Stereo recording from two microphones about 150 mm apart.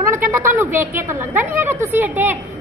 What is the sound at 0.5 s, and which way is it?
A woman's voice, 15° right (ahead or behind).